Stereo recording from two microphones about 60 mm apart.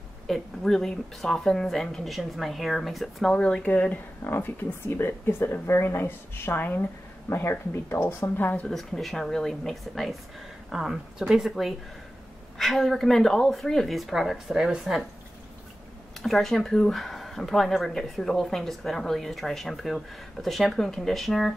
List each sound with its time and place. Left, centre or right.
0.3 s speech: centre; by 4.0 s left
4.2 s speech: left
8.6 s a woman's voice: centre
12.5 s a woman's voice: centre
16.2 s speech: centre